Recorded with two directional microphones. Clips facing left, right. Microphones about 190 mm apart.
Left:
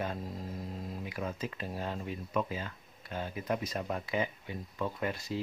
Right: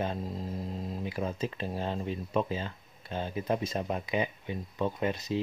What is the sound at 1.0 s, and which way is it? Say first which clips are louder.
Speech: right 5 dB; 30° right (ahead or behind).